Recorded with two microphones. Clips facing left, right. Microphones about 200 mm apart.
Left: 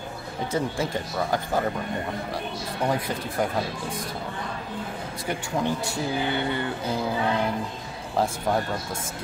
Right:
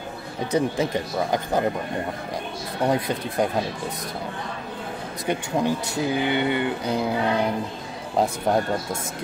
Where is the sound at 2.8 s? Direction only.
20° right (ahead or behind).